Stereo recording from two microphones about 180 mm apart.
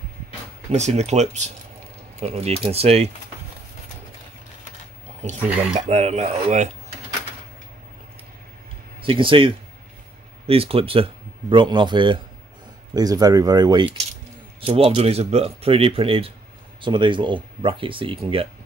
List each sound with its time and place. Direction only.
0.7 s speech: 40° right (ahead or behind)
5.9 s speech: 40° right (ahead or behind)
9.0 s speech: 30° right (ahead or behind)
14.6 s speech: 35° right (ahead or behind)